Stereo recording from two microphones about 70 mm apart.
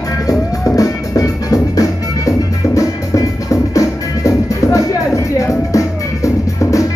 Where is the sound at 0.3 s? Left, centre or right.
Left.